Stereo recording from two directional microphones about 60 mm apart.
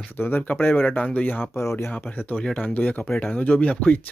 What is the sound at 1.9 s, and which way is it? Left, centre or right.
Speech, left.